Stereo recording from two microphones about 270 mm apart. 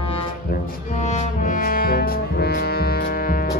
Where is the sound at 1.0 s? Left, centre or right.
Left.